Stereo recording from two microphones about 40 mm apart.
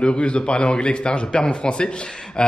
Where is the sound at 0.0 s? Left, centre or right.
Left.